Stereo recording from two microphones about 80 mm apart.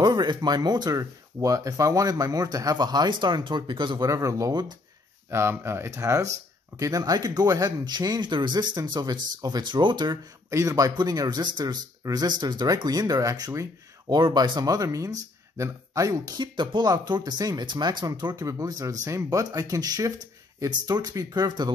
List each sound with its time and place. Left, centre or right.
0.0 s speech: right
4.0 s speech: right
5.3 s speech: right
8.3 s speech: right
10.5 s speech: right
11.0 s speech: right
14.1 s speech: right
14.7 s speech: right
16.3 s speech: right
18.5 s speech: right
21.5 s speech: right